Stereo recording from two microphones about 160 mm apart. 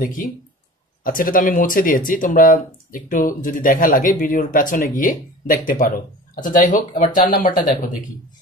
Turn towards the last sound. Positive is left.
turn(degrees=65)  # may be behind; listen again after turning